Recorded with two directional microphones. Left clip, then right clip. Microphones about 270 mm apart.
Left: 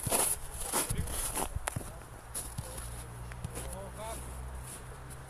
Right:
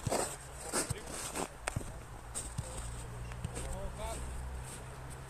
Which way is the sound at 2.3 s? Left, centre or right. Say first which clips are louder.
Even; centre.